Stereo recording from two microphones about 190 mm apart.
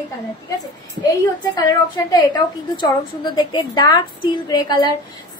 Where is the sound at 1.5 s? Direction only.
20° left (ahead or behind).